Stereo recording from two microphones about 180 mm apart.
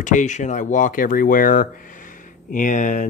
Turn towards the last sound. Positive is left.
turn(degrees=45)  # may be behind; listen again after turning